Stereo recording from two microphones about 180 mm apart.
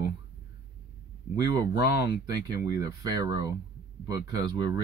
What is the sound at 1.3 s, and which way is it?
Speech, 20° right (ahead or behind).